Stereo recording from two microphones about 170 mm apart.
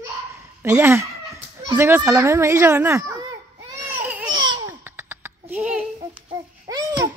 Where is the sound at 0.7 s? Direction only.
10° right (ahead or behind).